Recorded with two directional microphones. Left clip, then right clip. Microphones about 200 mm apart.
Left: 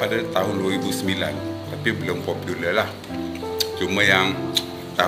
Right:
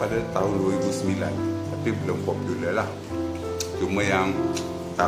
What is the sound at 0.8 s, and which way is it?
Speech, 10° right (ahead or behind).